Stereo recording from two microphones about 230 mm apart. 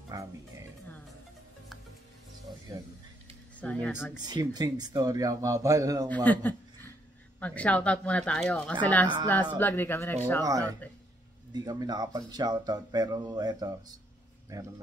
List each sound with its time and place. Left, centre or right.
0.1 s music: centre
3.5 s speech: centre
4.2 s speech: centre
6.0 s speech: centre
10.4 s speech: centre